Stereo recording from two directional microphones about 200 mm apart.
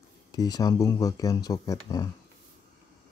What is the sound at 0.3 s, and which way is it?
Speech, 20° left (ahead or behind).